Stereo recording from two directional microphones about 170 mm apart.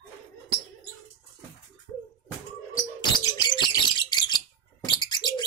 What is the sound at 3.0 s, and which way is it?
Bird, 25° left (ahead or behind).